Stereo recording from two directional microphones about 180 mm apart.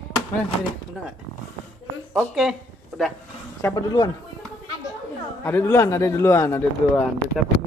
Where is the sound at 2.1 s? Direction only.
Centre (ahead or behind).